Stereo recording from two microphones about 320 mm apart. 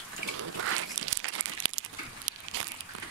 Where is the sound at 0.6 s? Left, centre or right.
Right.